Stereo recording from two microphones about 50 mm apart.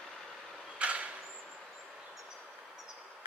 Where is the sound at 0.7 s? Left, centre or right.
Right.